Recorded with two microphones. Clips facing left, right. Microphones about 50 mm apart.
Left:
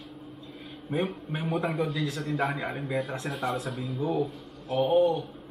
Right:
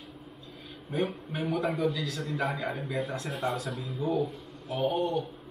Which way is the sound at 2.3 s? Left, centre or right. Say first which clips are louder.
Left 1 dB; left.